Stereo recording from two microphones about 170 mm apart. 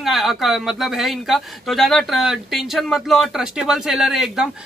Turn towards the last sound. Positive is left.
turn(degrees=0)  # may be behind; listen again after turning